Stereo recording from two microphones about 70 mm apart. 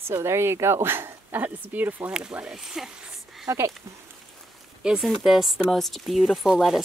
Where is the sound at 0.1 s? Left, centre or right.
Right.